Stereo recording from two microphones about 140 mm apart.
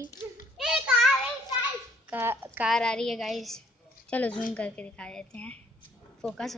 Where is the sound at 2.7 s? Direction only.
5° left (ahead or behind).